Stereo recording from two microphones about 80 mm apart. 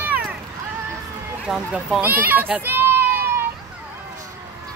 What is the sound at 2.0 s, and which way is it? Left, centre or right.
Speech, right.